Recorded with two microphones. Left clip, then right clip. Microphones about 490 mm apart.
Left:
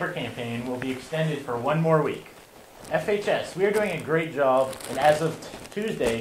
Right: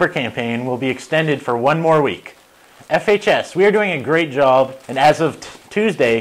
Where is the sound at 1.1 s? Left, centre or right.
Right.